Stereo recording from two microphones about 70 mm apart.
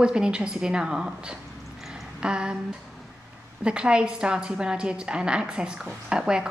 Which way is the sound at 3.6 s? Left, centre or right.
Centre.